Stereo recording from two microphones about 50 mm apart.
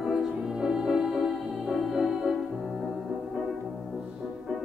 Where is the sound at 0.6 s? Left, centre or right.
Centre.